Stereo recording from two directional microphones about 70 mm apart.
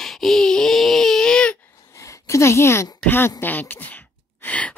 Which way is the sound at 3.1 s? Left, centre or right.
Left.